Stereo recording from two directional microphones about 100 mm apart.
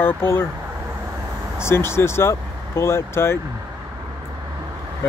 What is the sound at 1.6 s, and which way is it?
Speech, 25° left (ahead or behind).